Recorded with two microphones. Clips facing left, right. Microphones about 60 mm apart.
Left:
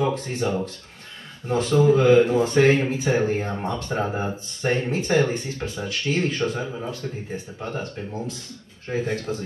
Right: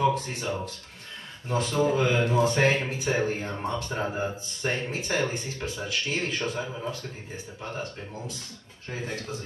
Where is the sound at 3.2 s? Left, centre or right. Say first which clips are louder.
Left 5 dB; left.